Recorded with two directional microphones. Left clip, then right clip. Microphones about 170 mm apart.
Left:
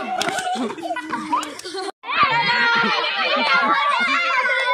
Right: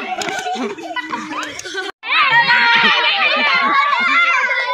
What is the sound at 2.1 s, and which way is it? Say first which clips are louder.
Chatter: right 5 dB; 70° left (ahead or behind).